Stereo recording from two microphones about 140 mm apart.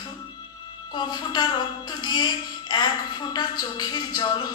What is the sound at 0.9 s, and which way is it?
A woman's voice, 30° left (ahead or behind).